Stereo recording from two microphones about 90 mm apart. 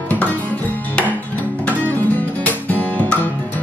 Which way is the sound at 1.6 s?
20° left (ahead or behind).